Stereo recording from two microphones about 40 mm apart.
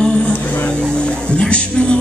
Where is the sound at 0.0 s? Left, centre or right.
Left.